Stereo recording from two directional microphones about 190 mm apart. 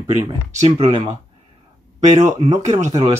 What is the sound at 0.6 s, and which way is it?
Speech, 30° right (ahead or behind).